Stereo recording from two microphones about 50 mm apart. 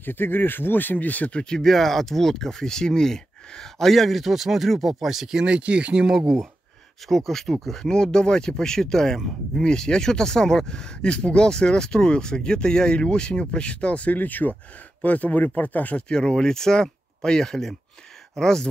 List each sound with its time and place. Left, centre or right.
0.0 s speech: left
1.4 s speech: centre
5.4 s speech: right
7.1 s speech: centre; by 16.0 s left
16.1 s speech: centre